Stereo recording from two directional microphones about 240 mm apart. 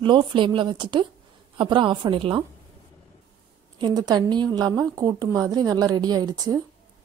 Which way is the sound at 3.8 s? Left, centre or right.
Centre.